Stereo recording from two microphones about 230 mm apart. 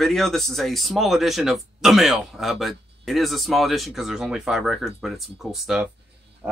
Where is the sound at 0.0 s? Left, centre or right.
Centre.